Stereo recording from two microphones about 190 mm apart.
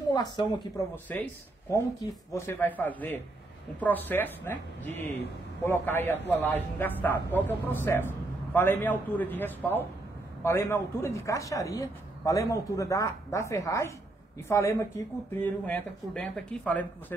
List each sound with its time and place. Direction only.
0.1 s a woman's voice: 20° left (ahead or behind)
1.0 s a man's voice: 10° left (ahead or behind)
5.6 s speech: 10° left (ahead or behind)